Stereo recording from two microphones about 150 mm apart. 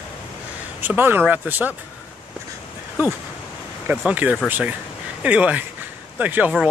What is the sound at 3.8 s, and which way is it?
Speech, 10° right (ahead or behind).